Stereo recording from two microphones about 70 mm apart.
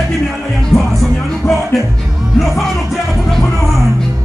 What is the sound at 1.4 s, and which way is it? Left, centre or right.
Music, left.